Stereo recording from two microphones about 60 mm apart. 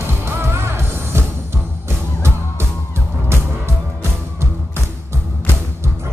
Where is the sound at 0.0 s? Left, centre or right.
Right.